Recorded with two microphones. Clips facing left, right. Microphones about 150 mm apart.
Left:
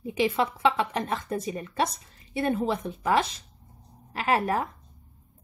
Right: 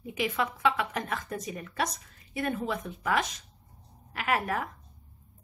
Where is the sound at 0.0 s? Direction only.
30° left (ahead or behind).